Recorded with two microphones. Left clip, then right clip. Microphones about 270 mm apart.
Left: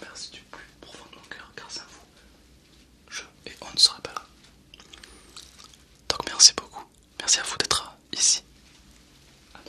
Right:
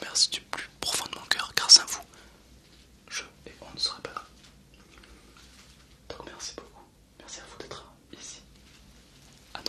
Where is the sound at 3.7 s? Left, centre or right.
Centre.